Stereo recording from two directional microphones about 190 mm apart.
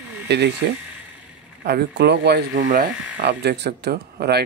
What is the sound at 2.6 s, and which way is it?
Speech, 45° right (ahead or behind).